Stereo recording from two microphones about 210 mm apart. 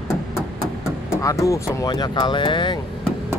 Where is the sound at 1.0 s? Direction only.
15° left (ahead or behind).